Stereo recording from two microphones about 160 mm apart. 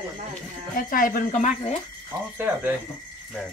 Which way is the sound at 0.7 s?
60° left (ahead or behind).